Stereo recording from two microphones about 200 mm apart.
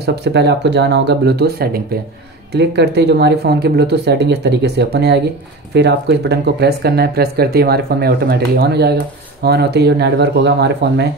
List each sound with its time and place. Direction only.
0.0 s speech: 55° right (ahead or behind)